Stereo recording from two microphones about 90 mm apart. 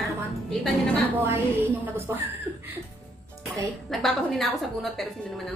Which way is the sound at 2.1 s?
35° right (ahead or behind).